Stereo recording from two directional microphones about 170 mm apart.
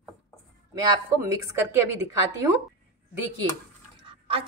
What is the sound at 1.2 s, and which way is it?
Speech, 15° right (ahead or behind).